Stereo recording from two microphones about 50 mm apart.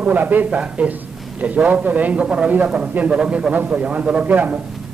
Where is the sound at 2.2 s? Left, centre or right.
Centre.